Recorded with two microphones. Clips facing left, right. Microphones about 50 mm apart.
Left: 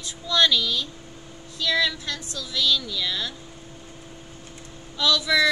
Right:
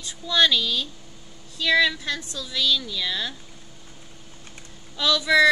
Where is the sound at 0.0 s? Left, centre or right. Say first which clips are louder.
Right 1 dB; right.